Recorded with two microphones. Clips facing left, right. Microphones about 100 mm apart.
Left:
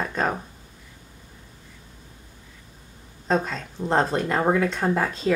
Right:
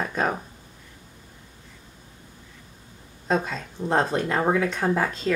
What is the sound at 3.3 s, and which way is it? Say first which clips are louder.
Speech: left 1 dB; 5° right (ahead or behind).